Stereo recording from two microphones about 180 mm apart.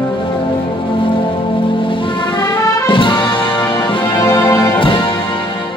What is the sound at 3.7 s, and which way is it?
Music, 25° left (ahead or behind).